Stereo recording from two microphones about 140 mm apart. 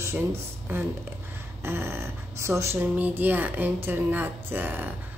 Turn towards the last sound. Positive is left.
turn(degrees=-15)  # may be behind; listen again after turning